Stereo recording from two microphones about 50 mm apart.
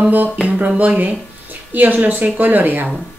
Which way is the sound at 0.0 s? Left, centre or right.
Right.